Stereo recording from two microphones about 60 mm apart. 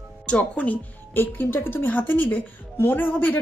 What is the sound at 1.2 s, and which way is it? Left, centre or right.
A woman's voice, left.